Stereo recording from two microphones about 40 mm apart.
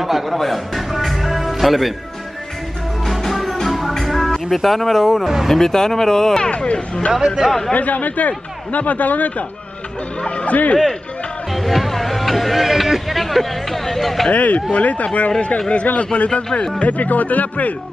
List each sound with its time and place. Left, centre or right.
0.0 s music: centre
3.1 s music: centre
4.5 s speech: centre
5.2 s speech: centre
5.5 s speech: centre
6.5 s speech: left
7.1 s speech: centre
7.7 s speech: left
11.5 s speech: centre
14.3 s speech: left
16.8 s speech: left